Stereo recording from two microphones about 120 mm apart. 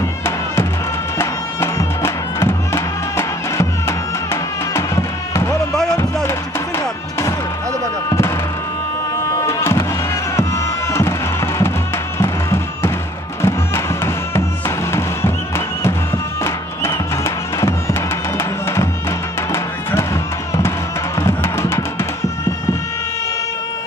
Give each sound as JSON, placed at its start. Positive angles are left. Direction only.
{"t": 1.1, "sound": "bagpipes", "side_deg": 20}
{"t": 9.5, "sound": "music", "side_deg": 20}
{"t": 21.2, "sound": "music", "side_deg": 20}